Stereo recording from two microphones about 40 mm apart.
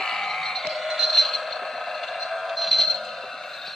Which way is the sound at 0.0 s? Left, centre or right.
Centre.